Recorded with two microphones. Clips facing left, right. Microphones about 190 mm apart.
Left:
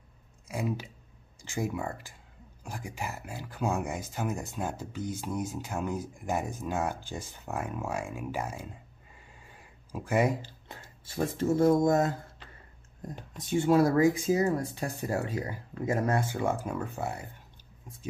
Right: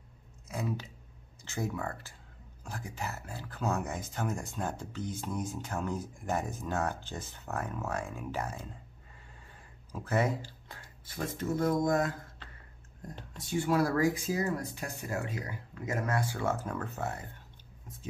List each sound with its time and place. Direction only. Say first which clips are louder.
0.5 s speech: left 3 dB; 10° left (ahead or behind)